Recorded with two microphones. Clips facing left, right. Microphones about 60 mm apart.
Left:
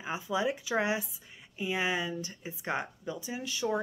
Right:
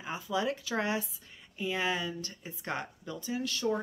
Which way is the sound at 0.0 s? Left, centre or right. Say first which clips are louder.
Left 1 dB; centre.